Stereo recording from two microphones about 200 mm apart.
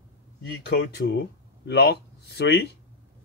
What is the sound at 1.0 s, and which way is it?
Speech, 55° left (ahead or behind).